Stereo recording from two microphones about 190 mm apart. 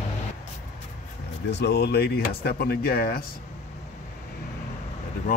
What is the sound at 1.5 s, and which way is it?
Speech, 60° left (ahead or behind).